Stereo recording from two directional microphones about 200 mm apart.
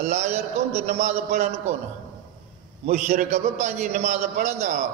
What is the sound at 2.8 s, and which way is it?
A man's voice, 35° right (ahead or behind).